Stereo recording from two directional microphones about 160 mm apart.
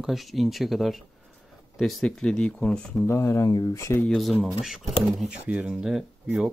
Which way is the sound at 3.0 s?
15° left (ahead or behind).